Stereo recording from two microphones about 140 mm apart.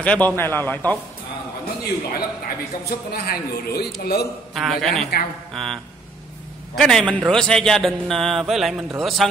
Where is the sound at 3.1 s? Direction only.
90° left.